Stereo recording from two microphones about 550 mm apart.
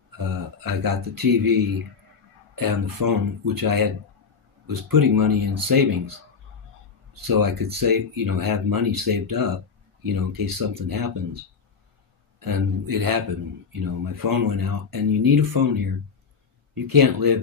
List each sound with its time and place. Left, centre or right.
0.1 s speech: right
7.2 s speech: right